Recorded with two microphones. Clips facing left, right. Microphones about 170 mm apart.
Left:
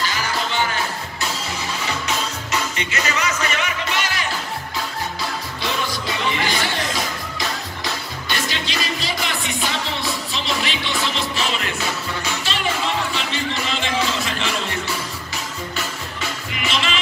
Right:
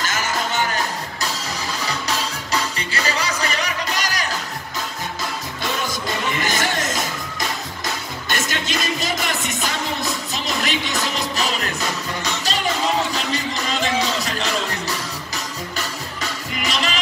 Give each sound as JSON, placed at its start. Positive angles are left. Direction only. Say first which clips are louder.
{"t": 0.0, "sound": "music", "louder": "even", "side_deg": -45}
{"t": 2.8, "sound": "music", "louder": "left 1 dB", "side_deg": -35}
{"t": 5.6, "sound": "music", "louder": "even", "side_deg": -45}
{"t": 13.1, "sound": "music", "louder": "right 1 dB", "side_deg": -40}
{"t": 16.2, "sound": "music", "louder": "right 1 dB", "side_deg": -40}